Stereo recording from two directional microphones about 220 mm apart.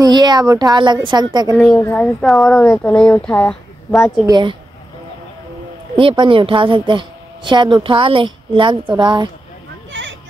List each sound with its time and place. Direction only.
0.0 s a woman's voice: 20° right (ahead or behind)
1.7 s speech: 10° left (ahead or behind)
4.3 s a woman's voice: 20° right (ahead or behind)
5.9 s a woman's voice: 20° right (ahead or behind)
9.9 s a sound: 60° right (ahead or behind)